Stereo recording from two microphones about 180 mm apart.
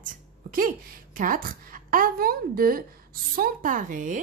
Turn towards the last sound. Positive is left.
turn(degrees=-45)  # may be behind; listen again after turning